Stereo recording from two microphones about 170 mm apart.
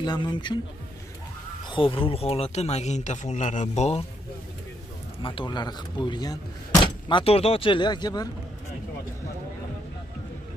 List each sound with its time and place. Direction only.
0.0 s speech: 25° left (ahead or behind)
1.7 s speech: 30° left (ahead or behind)
5.2 s speech: 30° left (ahead or behind)